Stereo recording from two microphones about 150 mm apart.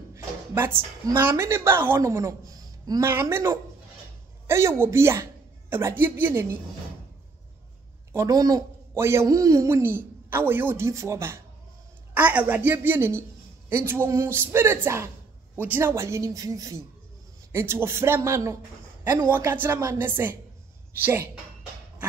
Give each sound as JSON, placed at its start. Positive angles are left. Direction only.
{"t": 0.1, "sound": "a woman's voice", "side_deg": -15}
{"t": 8.1, "sound": "a woman's voice", "side_deg": -20}